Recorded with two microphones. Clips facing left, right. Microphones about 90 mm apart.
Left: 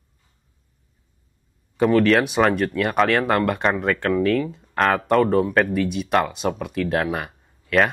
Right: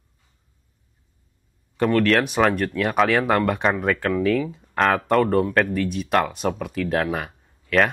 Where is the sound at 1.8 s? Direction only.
Centre (ahead or behind).